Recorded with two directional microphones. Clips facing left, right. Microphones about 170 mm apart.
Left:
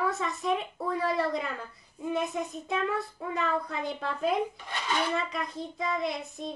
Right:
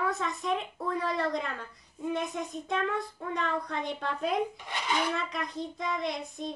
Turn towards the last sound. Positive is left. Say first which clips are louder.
# left 1 dB
turn(degrees=0)  # may be behind; listen again after turning